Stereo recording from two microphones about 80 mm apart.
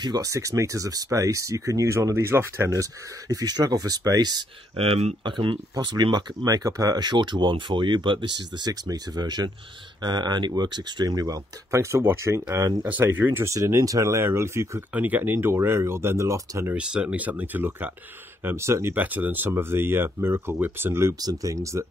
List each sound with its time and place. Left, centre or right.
0.0 s speech: right
0.3 s speech: right
5.2 s speech: right
8.6 s speech: right
11.7 s speech: right
12.8 s speech: right
15.0 s speech: right
16.7 s speech: centre; by 18.9 s right
18.9 s speech: right
21.2 s speech: right